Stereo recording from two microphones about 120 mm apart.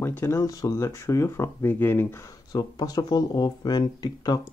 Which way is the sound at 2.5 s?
35° left (ahead or behind).